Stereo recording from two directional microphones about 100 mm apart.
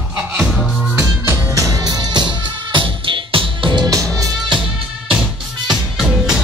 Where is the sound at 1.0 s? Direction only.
30° right (ahead or behind).